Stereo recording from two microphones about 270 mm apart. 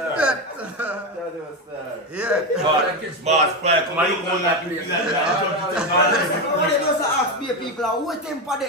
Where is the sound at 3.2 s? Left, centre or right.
Right.